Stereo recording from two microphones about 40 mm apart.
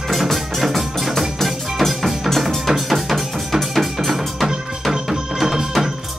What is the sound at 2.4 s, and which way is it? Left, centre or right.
Drum, centre.